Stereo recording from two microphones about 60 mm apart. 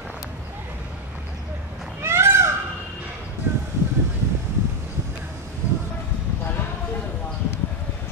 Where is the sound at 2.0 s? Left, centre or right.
Right.